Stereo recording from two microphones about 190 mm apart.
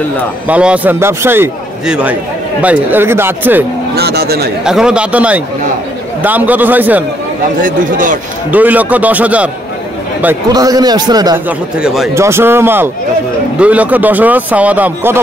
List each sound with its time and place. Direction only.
0.5 s a man's voice: 5° right (ahead or behind)
3.9 s a sound: 55° right (ahead or behind)
4.6 s a man's voice: 5° right (ahead or behind)
7.6 s a man's voice: 45° right (ahead or behind)
8.5 s a man's voice: 10° right (ahead or behind)
10.5 s a man's voice: 20° right (ahead or behind)
11.4 s a man's voice: 5° right (ahead or behind)
12.1 s a man's voice: 15° right (ahead or behind)